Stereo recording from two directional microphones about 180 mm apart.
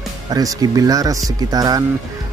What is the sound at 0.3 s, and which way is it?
Speech, 20° right (ahead or behind).